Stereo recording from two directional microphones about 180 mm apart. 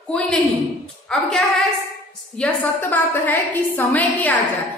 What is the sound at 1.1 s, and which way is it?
A woman's voice, 5° left (ahead or behind).